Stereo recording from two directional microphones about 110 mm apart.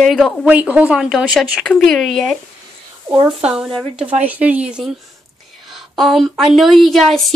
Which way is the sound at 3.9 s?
15° right (ahead or behind).